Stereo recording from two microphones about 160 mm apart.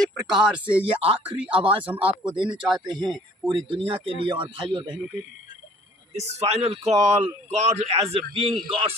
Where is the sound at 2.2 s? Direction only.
30° right (ahead or behind).